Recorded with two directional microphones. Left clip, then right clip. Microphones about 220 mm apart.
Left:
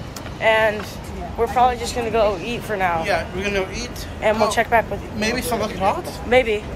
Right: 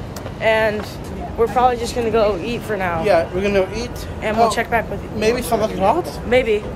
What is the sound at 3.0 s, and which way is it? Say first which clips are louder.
Speech: right 6 dB; 20° right (ahead or behind).